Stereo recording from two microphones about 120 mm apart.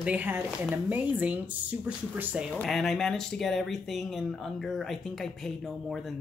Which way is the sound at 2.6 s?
5° left (ahead or behind).